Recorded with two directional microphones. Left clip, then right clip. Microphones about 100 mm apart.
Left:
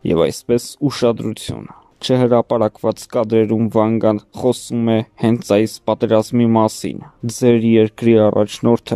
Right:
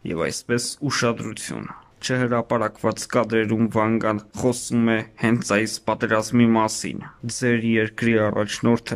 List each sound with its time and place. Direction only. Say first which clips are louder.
0.0 s speech: left 10 dB; 45° left (ahead or behind)